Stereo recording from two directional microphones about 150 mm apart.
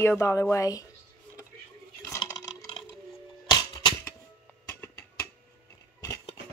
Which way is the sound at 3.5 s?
30° left (ahead or behind).